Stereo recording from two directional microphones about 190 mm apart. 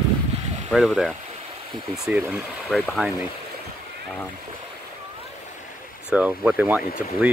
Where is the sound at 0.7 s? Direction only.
Centre (ahead or behind).